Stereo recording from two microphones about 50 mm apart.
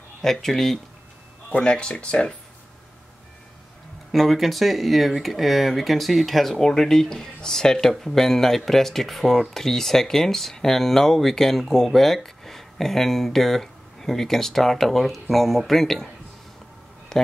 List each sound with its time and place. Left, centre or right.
0.2 s speech: centre
1.6 s speech: centre
4.1 s speech: centre
17.1 s a sound: centre